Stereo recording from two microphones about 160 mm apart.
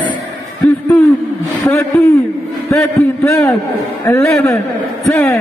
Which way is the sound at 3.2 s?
15° left (ahead or behind).